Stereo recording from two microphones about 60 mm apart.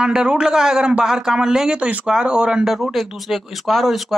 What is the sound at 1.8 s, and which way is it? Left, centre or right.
Speech, right.